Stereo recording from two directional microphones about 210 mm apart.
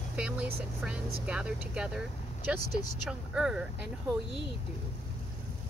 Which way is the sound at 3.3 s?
5° right (ahead or behind).